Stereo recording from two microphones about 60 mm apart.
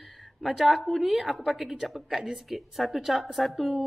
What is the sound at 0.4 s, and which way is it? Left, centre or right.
A woman's voice, centre.